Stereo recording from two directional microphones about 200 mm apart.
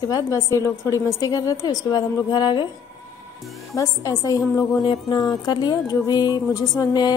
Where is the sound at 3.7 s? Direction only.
15° left (ahead or behind).